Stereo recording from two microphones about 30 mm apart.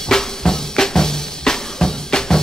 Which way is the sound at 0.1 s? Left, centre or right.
Centre.